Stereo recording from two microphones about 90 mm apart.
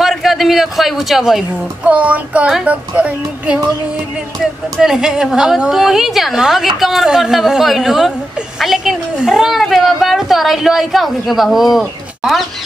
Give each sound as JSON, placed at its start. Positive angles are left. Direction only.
{"t": 0.0, "sound": "a man's voice", "side_deg": 0}
{"t": 1.9, "sound": "a woman's voice", "side_deg": -15}
{"t": 4.7, "sound": "a woman's voice", "side_deg": -5}